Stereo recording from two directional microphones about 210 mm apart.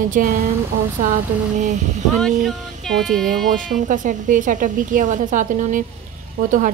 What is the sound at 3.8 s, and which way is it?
A woman's voice, 40° right (ahead or behind).